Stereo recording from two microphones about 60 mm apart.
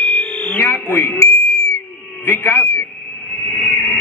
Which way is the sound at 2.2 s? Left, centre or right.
Left.